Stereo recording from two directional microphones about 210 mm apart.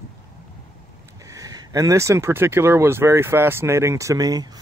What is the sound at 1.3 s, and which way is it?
Speech, 15° right (ahead or behind).